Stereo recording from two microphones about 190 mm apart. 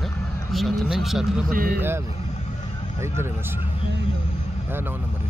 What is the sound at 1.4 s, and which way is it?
Speech, 50° right (ahead or behind).